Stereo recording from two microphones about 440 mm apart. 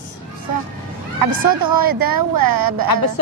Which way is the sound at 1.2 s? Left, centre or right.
Right.